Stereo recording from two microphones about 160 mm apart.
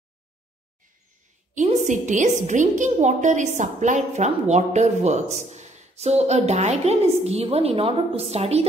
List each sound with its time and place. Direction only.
1.5 s a woman's voice: 50° right (ahead or behind)